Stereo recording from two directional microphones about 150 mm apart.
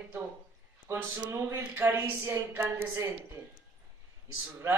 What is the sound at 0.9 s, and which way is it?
A man's voice, 20° right (ahead or behind).